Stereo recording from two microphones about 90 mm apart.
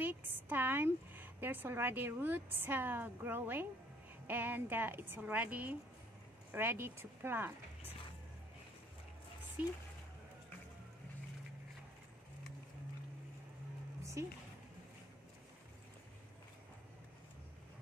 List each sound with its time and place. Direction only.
0.0 s a woman's voice: 20° right (ahead or behind)
14.2 s speech: 30° right (ahead or behind)